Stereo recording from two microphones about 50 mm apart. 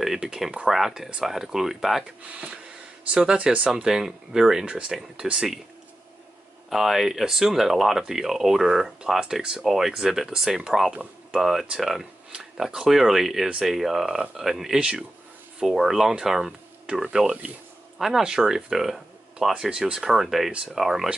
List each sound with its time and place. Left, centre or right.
0.0 s speech: centre
2.2 s speech: right
6.7 s speech: centre
9.6 s speech: centre